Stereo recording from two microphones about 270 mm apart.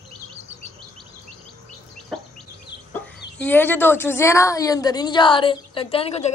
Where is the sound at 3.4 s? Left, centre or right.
Centre.